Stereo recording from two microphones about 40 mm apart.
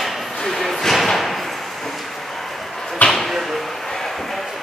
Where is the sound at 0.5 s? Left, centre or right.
Centre.